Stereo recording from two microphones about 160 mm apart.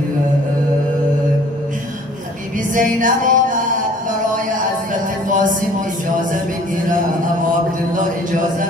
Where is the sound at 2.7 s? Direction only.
55° right (ahead or behind).